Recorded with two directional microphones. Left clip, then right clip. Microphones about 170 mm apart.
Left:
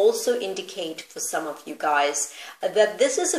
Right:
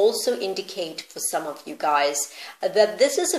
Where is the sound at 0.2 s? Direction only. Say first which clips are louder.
Even; 35° right (ahead or behind).